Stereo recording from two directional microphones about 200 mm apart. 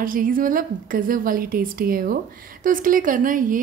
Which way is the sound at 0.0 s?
45° right (ahead or behind).